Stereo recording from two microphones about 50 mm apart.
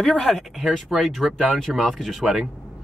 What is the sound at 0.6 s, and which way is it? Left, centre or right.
Speech, centre.